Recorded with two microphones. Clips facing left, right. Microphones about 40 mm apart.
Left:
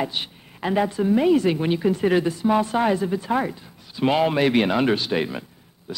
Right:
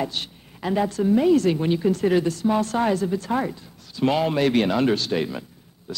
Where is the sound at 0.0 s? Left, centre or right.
Centre.